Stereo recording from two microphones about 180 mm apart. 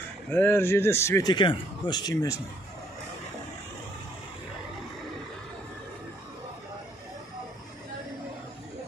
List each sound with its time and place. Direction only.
0.3 s speech: 10° left (ahead or behind)